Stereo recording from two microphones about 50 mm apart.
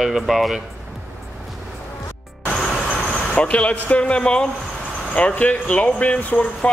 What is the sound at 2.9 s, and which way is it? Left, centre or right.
Speech, centre.